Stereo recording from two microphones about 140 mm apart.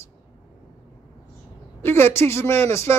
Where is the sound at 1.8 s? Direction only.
15° left (ahead or behind).